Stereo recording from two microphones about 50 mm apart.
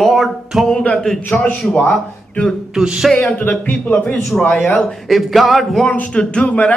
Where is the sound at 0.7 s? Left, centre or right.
Centre.